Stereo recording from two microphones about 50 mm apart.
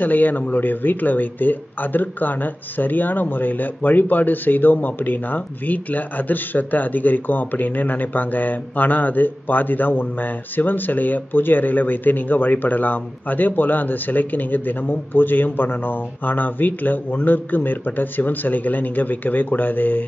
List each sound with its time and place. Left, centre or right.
0.0 s speech: left